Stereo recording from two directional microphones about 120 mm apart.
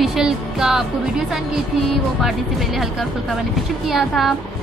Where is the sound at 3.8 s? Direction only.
Centre (ahead or behind).